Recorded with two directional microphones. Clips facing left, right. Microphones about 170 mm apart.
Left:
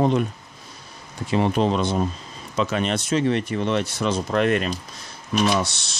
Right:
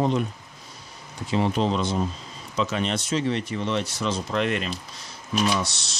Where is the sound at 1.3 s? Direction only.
55° left (ahead or behind).